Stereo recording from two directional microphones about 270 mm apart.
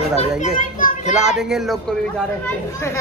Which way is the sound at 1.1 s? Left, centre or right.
Centre.